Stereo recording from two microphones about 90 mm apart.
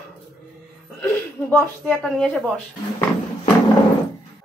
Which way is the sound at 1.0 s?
25° left (ahead or behind).